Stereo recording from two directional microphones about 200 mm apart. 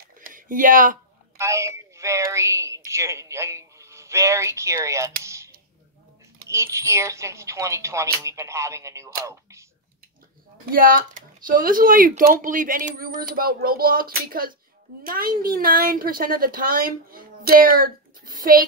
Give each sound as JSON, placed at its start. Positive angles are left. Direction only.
{"t": 0.0, "sound": "a sound", "side_deg": -45}
{"t": 1.4, "sound": "a woman's voice", "side_deg": -15}
{"t": 10.6, "sound": "speech", "side_deg": -45}